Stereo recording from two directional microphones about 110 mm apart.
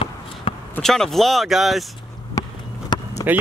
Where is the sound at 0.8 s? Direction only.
5° left (ahead or behind).